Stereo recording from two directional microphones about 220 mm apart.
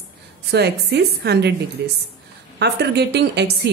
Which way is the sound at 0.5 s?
50° right (ahead or behind).